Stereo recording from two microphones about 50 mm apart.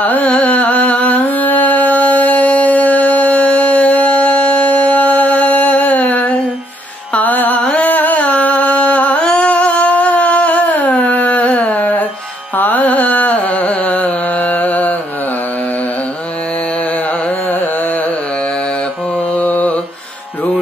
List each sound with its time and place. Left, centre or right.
0.0 s music: left
0.3 s carnatic music: left
9.3 s a sound: left
11.7 s music: left
12.5 s carnatic music: left
19.3 s mantra: left